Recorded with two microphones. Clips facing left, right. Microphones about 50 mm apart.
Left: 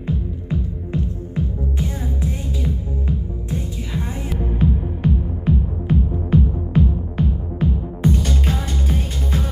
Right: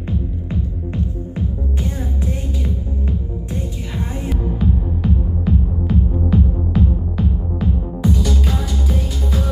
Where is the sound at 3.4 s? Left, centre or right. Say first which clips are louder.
Right 1 dB; centre.